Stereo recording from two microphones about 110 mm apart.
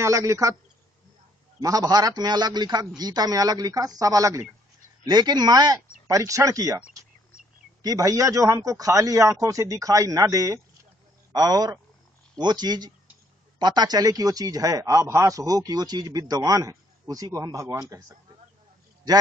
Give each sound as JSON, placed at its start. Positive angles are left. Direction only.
{"t": 0.0, "sound": "speech", "side_deg": -25}
{"t": 1.6, "sound": "a man's voice", "side_deg": -35}
{"t": 7.8, "sound": "a man's voice", "side_deg": -35}